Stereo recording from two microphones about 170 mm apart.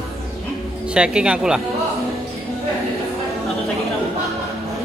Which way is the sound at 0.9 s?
5° right (ahead or behind).